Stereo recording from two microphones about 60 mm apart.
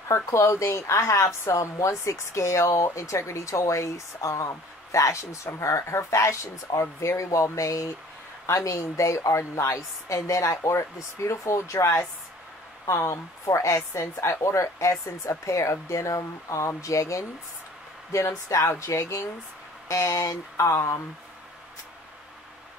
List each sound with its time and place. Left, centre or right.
0.1 s speech: left